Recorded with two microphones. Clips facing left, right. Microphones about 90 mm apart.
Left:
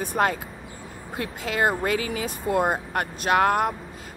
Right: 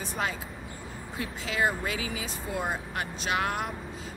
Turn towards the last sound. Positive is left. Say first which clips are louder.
# left 9 dB
turn(degrees=50)  # may be behind; listen again after turning